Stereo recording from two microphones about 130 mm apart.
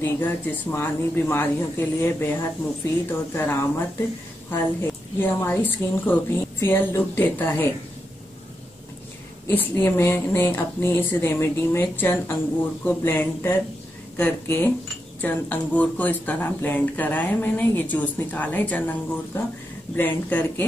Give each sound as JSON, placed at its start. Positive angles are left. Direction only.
{"t": 0.0, "sound": "speech", "side_deg": 15}
{"t": 9.5, "sound": "speech", "side_deg": 15}